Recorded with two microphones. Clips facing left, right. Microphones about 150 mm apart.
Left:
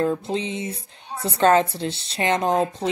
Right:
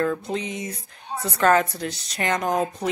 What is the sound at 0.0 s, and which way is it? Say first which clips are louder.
A woman's voice: left 2 dB; 25° left (ahead or behind).